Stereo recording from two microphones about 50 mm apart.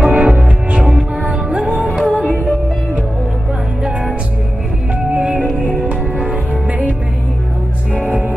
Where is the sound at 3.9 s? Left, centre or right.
Right.